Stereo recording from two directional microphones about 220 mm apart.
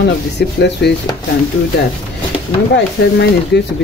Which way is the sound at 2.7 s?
50° left (ahead or behind).